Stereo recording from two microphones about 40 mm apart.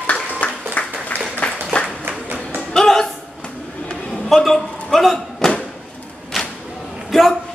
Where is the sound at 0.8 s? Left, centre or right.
Left.